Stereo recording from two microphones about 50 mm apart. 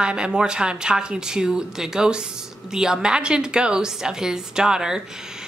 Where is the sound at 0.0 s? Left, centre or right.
Centre.